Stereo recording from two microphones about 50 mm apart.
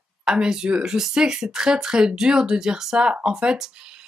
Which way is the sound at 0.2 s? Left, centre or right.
Centre.